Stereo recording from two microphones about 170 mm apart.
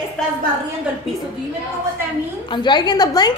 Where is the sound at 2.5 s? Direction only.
25° left (ahead or behind).